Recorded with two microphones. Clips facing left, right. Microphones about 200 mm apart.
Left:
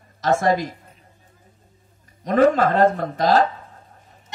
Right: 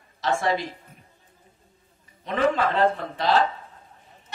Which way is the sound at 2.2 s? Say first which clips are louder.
Left 7 dB; 45° left (ahead or behind).